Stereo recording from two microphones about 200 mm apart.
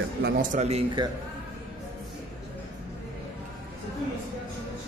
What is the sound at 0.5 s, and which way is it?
Speech, 30° right (ahead or behind).